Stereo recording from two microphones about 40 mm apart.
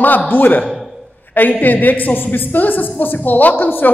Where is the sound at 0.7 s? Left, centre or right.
Centre.